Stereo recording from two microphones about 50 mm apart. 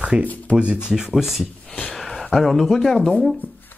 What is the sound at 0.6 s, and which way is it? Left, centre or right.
Speech, centre.